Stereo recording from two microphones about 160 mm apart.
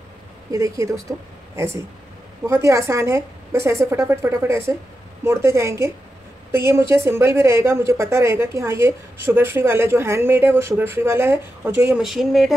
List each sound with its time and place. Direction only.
0.5 s a woman's voice: 20° right (ahead or behind)
11.9 s speech: centre (ahead or behind)